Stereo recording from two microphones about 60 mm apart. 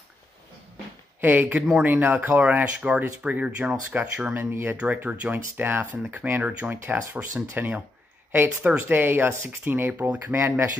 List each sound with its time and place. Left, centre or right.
1.2 s speech: right
4.3 s speech: right
4.7 s speech: right